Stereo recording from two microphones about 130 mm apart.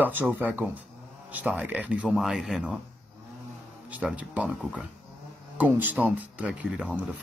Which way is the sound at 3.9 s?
5° right (ahead or behind).